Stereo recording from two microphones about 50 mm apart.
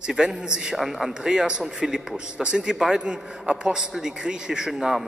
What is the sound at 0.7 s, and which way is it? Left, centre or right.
Speech, centre.